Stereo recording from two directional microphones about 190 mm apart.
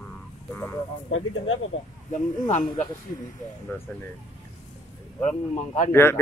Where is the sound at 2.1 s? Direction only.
40° left (ahead or behind).